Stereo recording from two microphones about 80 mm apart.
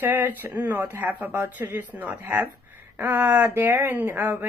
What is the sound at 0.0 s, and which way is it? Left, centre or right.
Speech, right.